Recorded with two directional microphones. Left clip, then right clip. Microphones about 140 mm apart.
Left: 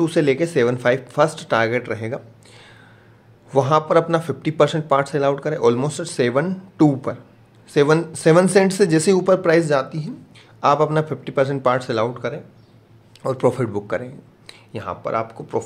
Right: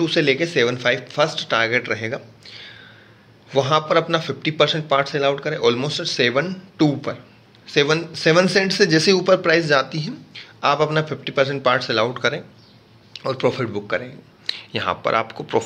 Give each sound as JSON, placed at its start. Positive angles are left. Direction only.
{"t": 0.0, "sound": "speech", "side_deg": 40}
{"t": 3.5, "sound": "a man's voice", "side_deg": 45}
{"t": 9.7, "sound": "speech", "side_deg": 20}
{"t": 10.3, "sound": "a man's voice", "side_deg": 35}
{"t": 12.1, "sound": "speech", "side_deg": 10}
{"t": 13.2, "sound": "speech", "side_deg": 45}
{"t": 14.4, "sound": "speech", "side_deg": 5}